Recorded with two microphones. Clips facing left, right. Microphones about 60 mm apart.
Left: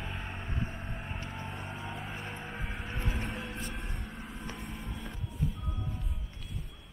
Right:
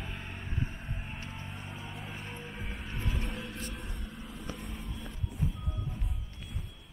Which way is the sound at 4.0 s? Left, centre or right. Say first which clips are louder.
Left 1 dB; left.